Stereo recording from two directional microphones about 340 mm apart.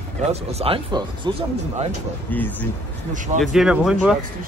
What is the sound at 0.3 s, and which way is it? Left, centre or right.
Speech, centre.